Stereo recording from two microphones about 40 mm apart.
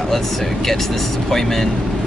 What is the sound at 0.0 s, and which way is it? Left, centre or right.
Speech, centre.